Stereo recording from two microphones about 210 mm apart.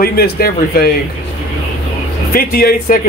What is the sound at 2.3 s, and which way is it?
Speech, 45° left (ahead or behind).